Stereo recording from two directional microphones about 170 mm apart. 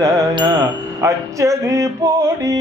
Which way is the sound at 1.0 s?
20° right (ahead or behind).